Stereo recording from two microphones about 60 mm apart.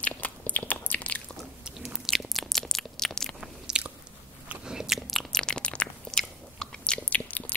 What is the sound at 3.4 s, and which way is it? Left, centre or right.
Biting, centre.